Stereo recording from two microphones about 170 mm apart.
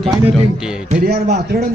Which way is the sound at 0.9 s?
65° right (ahead or behind).